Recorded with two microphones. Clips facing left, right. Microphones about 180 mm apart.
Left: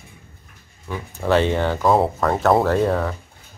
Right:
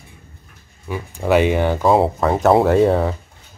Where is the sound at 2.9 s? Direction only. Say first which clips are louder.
Right 4 dB; 25° right (ahead or behind).